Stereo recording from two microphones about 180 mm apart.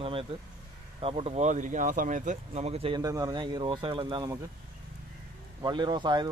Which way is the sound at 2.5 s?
35° right (ahead or behind).